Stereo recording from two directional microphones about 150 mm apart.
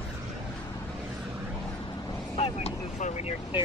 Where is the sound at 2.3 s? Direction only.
40° left (ahead or behind).